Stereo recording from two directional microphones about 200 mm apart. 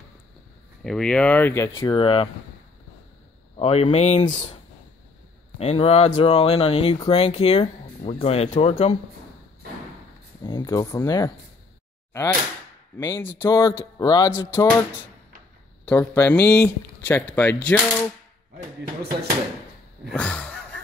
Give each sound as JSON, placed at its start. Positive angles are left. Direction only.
{"t": 0.8, "sound": "speech", "side_deg": 5}
{"t": 1.8, "sound": "speech", "side_deg": 25}
{"t": 3.5, "sound": "speech", "side_deg": 30}
{"t": 5.6, "sound": "speech", "side_deg": 30}
{"t": 10.4, "sound": "speech", "side_deg": 20}
{"t": 12.9, "sound": "speech", "side_deg": 15}
{"t": 15.8, "sound": "speech", "side_deg": 5}
{"t": 20.1, "sound": "speech", "side_deg": 5}